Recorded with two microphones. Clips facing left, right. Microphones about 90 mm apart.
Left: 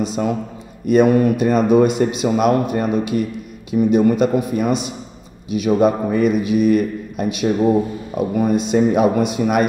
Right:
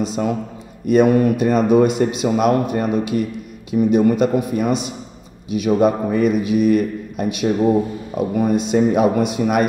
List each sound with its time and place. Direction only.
0.0 s a man's voice: 10° left (ahead or behind)
8.5 s a man's voice: 10° left (ahead or behind)
8.8 s a man's voice: 25° left (ahead or behind)
9.2 s a man's voice: 10° left (ahead or behind)